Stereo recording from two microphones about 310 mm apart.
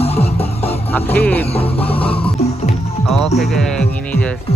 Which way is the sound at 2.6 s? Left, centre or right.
Left.